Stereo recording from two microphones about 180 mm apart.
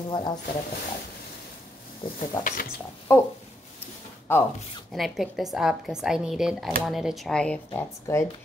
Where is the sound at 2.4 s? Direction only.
50° left (ahead or behind).